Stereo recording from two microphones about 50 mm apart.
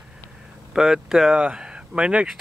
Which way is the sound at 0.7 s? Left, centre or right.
Centre.